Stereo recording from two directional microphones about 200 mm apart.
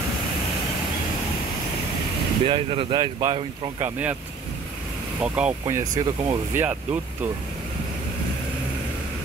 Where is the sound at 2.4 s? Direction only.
25° right (ahead or behind).